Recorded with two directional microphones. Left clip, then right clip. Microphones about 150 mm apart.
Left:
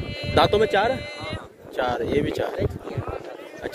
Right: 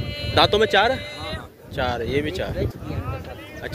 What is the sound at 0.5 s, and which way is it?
Speech, 10° left (ahead or behind).